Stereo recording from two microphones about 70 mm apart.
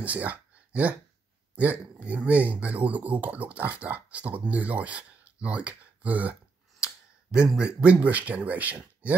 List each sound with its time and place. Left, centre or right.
0.0 s a sound: right
1.5 s speech: right
7.3 s speech: centre